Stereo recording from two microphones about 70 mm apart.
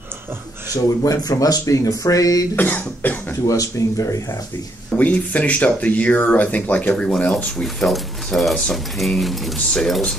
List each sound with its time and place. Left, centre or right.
1.0 s speech: left
2.5 s speech: left
3.4 s speech: left
4.9 s speech: left
7.6 s speech: centre